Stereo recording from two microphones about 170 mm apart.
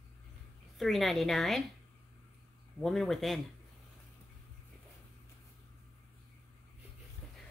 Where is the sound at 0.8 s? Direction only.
Centre (ahead or behind).